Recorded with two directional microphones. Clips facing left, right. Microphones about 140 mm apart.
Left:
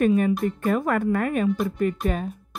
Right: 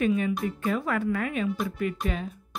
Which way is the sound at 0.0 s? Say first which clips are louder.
Left 5 dB; 50° left (ahead or behind).